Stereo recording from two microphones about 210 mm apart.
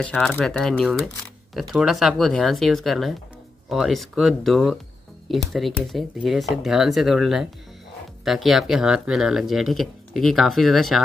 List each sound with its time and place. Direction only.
0.0 s speech: 5° left (ahead or behind)